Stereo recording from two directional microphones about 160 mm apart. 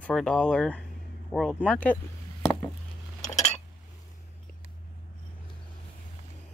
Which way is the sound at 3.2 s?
45° left (ahead or behind).